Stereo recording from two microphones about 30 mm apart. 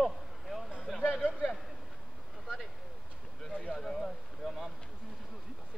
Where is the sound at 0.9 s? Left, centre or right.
Centre.